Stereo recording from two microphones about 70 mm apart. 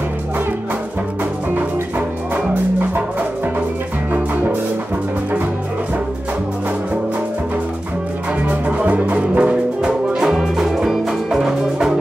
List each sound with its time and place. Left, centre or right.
1.5 s music: right
8.5 s music: right